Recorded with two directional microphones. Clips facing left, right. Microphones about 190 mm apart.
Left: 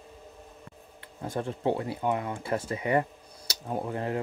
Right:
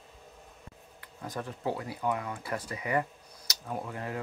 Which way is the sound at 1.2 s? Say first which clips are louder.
Left 5 dB; 30° left (ahead or behind).